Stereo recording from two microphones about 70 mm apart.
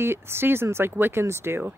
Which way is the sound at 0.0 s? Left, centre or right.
Right.